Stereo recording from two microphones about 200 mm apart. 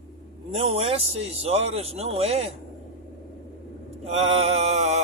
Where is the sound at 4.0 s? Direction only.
30° right (ahead or behind).